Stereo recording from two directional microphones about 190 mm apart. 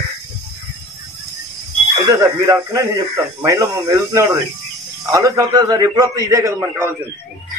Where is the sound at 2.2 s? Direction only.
15° right (ahead or behind).